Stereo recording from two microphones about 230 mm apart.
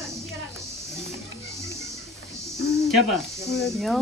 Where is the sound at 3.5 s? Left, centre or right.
Centre.